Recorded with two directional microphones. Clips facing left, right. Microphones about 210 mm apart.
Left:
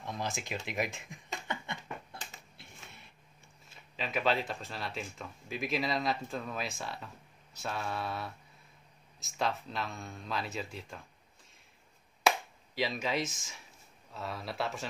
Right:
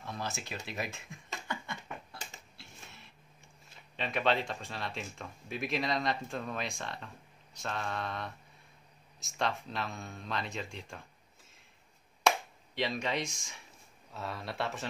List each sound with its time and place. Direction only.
0.0 s a sound: 15° left (ahead or behind)
3.9 s speech: centre (ahead or behind)
7.5 s mantra: 5° left (ahead or behind)
9.2 s speech: centre (ahead or behind)
12.2 s finger snapping: 5° left (ahead or behind)
14.1 s speech: centre (ahead or behind)